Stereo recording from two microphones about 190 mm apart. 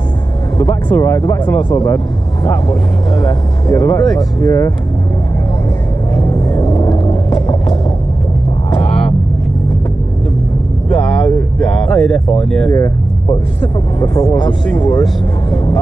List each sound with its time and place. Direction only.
0.6 s speech: 15° left (ahead or behind)
6.1 s vehicle: 20° left (ahead or behind)
11.0 s a sound: 5° left (ahead or behind)
12.7 s speech: 15° left (ahead or behind)